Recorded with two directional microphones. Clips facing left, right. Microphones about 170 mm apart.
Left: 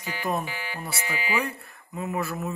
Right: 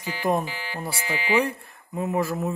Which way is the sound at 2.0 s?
25° right (ahead or behind).